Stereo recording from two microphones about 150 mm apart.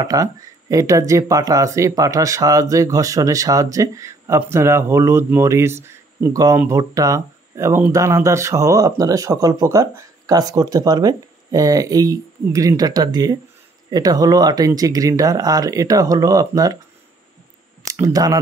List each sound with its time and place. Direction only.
0.0 s speech: 25° right (ahead or behind)
17.8 s speech: 20° right (ahead or behind)